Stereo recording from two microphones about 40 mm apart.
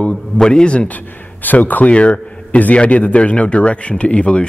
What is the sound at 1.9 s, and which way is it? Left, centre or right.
A man's voice, left.